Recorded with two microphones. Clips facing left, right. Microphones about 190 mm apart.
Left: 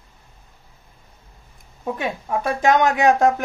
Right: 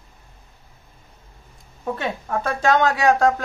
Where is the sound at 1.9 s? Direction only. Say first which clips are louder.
Left 2 dB; 15° left (ahead or behind).